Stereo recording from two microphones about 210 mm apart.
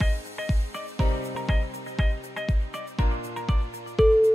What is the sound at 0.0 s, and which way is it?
Music, centre (ahead or behind).